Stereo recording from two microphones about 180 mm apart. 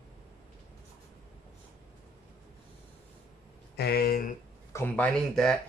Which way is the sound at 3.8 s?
60° left (ahead or behind).